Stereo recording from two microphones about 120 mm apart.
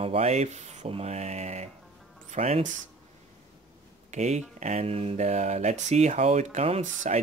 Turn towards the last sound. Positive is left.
turn(degrees=-75)  # may be behind; listen again after turning